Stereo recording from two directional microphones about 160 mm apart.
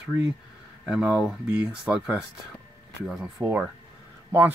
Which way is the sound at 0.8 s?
Centre (ahead or behind).